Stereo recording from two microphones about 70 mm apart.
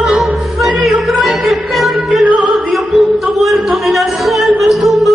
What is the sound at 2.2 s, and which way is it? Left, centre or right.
Opera, centre.